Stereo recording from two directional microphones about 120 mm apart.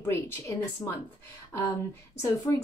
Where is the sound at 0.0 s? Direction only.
25° left (ahead or behind).